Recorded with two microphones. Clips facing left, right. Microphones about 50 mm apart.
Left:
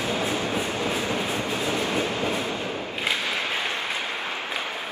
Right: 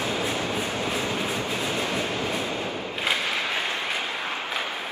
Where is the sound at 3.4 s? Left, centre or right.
Left.